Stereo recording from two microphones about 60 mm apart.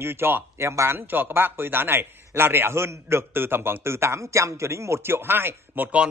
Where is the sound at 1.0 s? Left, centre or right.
Right.